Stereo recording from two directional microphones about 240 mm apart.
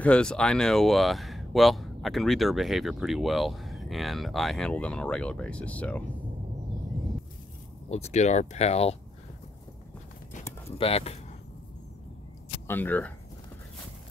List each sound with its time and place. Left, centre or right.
0.0 s speech: centre
7.9 s speech: left
10.8 s speech: left
12.6 s speech: centre